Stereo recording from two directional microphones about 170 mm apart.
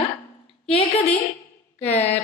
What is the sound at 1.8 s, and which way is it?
Speech, 40° left (ahead or behind).